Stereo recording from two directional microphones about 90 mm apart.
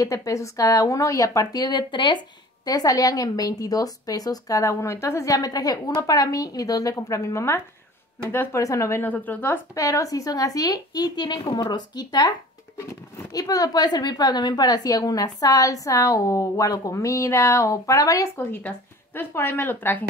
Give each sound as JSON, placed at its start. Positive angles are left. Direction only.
{"t": 0.0, "sound": "a woman's voice", "side_deg": 40}
{"t": 2.6, "sound": "a woman's voice", "side_deg": 45}
{"t": 9.0, "sound": "a woman's voice", "side_deg": 20}
{"t": 9.8, "sound": "a woman's voice", "side_deg": 40}
{"t": 18.4, "sound": "a woman's voice", "side_deg": 20}